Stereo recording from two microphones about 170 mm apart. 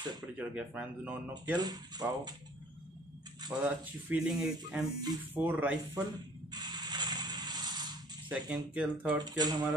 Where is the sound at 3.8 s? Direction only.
5° right (ahead or behind).